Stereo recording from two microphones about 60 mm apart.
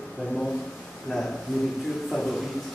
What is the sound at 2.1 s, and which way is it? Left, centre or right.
Speech, centre.